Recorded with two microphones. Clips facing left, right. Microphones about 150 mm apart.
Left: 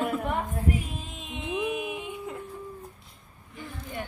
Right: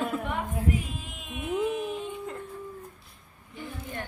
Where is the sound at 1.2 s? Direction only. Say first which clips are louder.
Right 2 dB; 20° left (ahead or behind).